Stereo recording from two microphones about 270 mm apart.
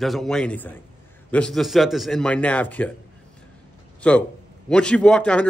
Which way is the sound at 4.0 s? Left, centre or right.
Centre.